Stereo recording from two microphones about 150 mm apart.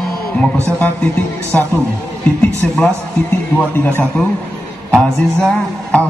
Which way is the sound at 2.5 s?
10° left (ahead or behind).